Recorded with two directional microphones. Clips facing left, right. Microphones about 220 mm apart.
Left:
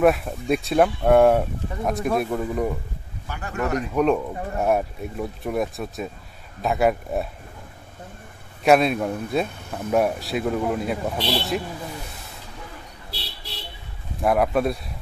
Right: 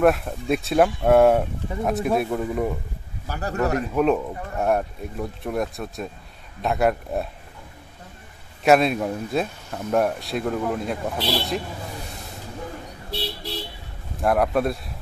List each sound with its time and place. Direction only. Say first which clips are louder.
0.0 s speech: even; centre (ahead or behind)
3.3 s speech: right 2 dB; 40° right (ahead or behind)
3.9 s speech: even; centre (ahead or behind)
8.6 s speech: even; centre (ahead or behind)
14.2 s speech: even; centre (ahead or behind)